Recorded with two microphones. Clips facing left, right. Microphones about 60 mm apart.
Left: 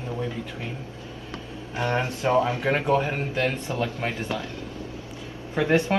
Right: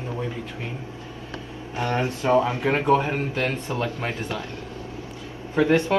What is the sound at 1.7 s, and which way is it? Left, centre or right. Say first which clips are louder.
Speech: right 1 dB; left.